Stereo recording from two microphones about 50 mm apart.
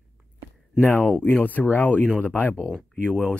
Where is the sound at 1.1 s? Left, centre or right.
Left.